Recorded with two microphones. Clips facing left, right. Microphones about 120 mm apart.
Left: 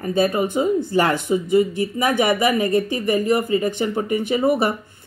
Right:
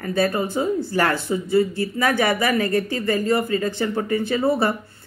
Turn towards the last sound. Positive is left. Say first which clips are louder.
# left 1 dB
turn(degrees=15)  # may be behind; listen again after turning